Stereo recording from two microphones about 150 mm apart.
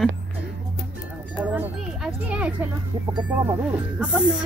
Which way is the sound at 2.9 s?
35° right (ahead or behind).